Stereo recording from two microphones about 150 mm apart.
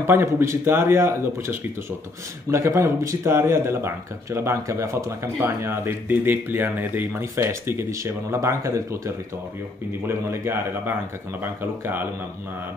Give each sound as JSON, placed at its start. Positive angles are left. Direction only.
{"t": 0.0, "sound": "speech", "side_deg": -15}